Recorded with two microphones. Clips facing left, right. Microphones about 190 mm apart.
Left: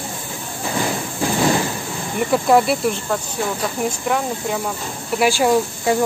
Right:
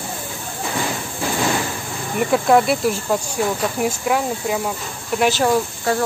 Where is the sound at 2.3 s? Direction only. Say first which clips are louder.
Even; centre (ahead or behind).